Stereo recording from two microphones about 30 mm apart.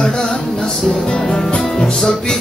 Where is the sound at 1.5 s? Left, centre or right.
Centre.